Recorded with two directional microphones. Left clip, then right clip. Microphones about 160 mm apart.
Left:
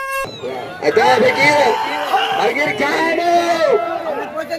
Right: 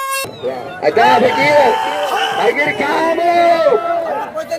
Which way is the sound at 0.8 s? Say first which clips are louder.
Right 2 dB; 75° left (ahead or behind).